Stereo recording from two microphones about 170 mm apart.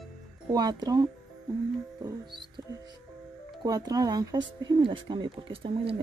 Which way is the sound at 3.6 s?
20° right (ahead or behind).